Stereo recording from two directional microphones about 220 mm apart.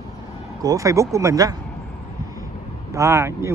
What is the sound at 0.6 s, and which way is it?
Speech, 15° right (ahead or behind).